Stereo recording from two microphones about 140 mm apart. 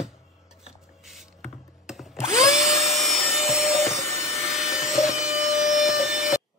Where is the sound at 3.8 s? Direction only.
20° left (ahead or behind).